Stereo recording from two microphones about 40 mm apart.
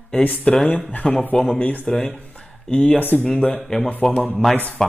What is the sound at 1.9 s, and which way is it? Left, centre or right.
Speech, left.